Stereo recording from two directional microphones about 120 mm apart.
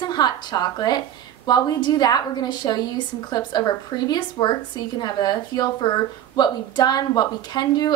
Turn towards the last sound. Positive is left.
turn(degrees=35)  # may be behind; listen again after turning